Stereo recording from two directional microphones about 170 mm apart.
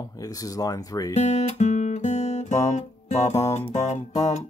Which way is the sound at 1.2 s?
40° left (ahead or behind).